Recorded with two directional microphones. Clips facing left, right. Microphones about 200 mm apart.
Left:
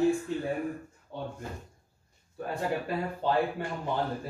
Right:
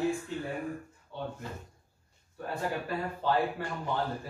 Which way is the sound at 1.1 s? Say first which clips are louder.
Left 1 dB; 50° left (ahead or behind).